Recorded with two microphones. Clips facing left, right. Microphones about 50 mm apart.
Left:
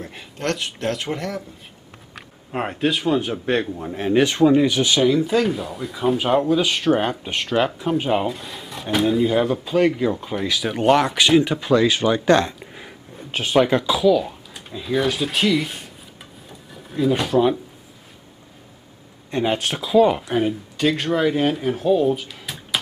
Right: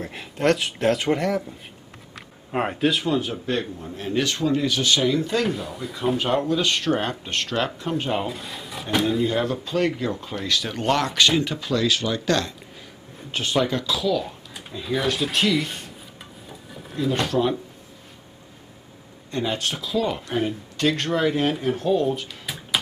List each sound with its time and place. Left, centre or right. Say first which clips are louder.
0.0 s speech: right 4 dB; centre
2.5 s speech: even; centre
3.8 s speech: left 7 dB; left
13.3 s speech: left 2 dB; centre
13.6 s speech: left 7 dB; left; by 15.9 s centre
16.4 s drawer open or close: right 1 dB; centre
19.4 s speech: left 5 dB; left
20.2 s speech: left 4 dB; centre